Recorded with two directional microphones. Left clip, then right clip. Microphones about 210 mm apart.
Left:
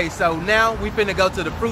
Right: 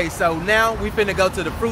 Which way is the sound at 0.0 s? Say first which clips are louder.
Even; 5° right (ahead or behind).